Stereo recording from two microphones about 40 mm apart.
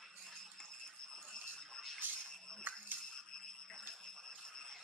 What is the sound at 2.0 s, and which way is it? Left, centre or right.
Music, right.